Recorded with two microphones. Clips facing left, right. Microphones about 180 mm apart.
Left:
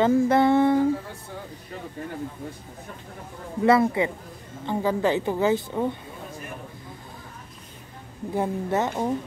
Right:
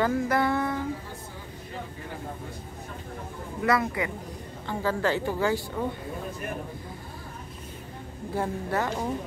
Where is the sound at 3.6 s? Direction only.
25° left (ahead or behind).